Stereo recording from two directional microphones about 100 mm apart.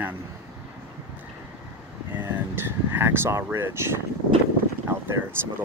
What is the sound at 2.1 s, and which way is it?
Vehicle, 20° right (ahead or behind).